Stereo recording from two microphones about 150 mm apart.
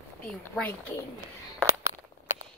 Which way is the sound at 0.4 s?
15° left (ahead or behind).